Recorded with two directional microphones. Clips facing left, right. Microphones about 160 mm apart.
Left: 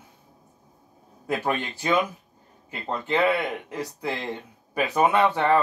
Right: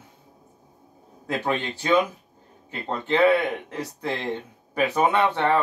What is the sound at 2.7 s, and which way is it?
A man's voice, 10° left (ahead or behind).